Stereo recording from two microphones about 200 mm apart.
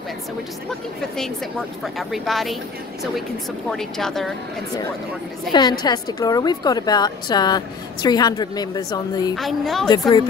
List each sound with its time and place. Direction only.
1.1 s a woman's voice: centre (ahead or behind)
3.7 s a woman's voice: centre (ahead or behind)
5.5 s a woman's voice: 20° left (ahead or behind)
9.3 s a woman's voice: centre (ahead or behind)
9.8 s a woman's voice: 20° left (ahead or behind)